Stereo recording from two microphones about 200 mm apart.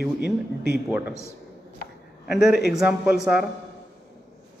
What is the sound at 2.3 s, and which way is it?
A man's voice, centre (ahead or behind).